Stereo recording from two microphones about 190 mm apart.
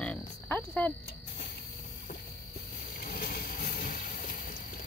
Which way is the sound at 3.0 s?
50° left (ahead or behind).